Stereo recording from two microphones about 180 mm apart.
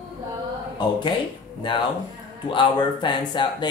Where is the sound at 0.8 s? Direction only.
25° left (ahead or behind).